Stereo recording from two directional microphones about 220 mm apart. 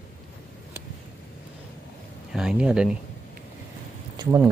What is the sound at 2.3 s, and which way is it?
Speech, 5° right (ahead or behind).